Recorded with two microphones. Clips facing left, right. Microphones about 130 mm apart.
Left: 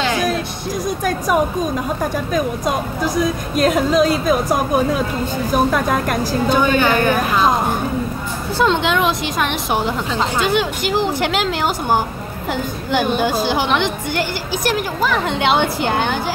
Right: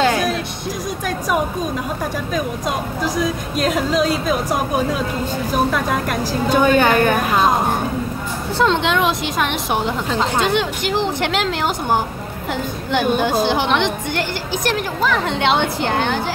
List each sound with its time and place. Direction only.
1.0 s speech: 45° left (ahead or behind)
3.5 s a woman's voice: 45° left (ahead or behind)
5.5 s a woman's voice: 45° left (ahead or behind)
6.5 s a woman's voice: 45° right (ahead or behind)
8.5 s a woman's voice: 5° left (ahead or behind)